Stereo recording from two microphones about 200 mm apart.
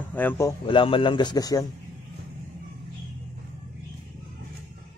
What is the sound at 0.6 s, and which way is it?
A man's voice, 25° left (ahead or behind).